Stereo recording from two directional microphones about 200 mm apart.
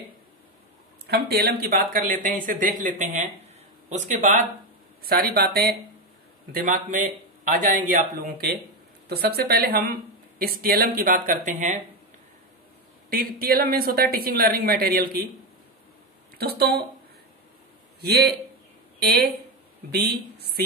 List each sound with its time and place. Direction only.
1.0 s speech: 50° right (ahead or behind)
5.0 s speech: 50° right (ahead or behind)
13.1 s speech: 50° right (ahead or behind)
16.3 s speech: 50° right (ahead or behind)
18.0 s speech: 50° right (ahead or behind)